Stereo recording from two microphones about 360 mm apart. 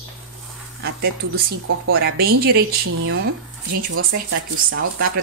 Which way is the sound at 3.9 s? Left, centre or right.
Right.